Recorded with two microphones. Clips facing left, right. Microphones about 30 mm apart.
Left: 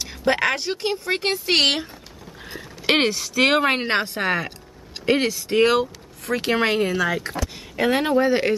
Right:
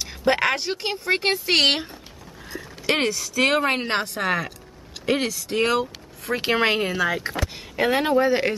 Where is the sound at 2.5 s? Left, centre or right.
Left.